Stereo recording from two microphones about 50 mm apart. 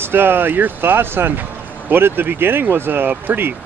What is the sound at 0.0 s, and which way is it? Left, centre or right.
Speech, right.